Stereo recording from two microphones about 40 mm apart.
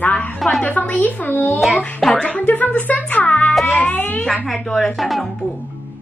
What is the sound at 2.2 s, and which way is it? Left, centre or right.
Speech, left.